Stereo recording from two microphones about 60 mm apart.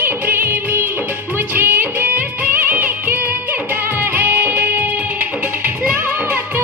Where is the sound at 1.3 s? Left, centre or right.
Right.